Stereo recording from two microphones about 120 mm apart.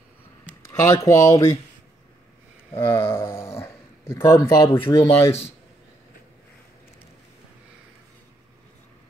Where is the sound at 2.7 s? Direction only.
15° left (ahead or behind).